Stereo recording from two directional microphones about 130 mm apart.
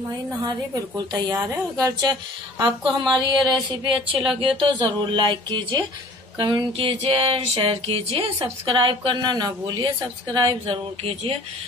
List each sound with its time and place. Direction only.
0.4 s a woman's voice: 30° right (ahead or behind)
10.7 s speech: 40° right (ahead or behind)